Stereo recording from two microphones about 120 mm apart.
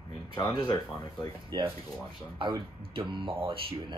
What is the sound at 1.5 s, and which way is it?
Speech, 35° right (ahead or behind).